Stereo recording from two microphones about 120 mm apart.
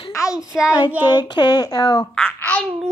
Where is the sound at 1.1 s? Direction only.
40° left (ahead or behind).